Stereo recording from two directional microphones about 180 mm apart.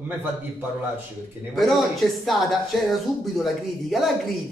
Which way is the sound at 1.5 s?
Centre (ahead or behind).